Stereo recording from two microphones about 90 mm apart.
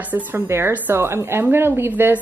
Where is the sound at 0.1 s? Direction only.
25° right (ahead or behind).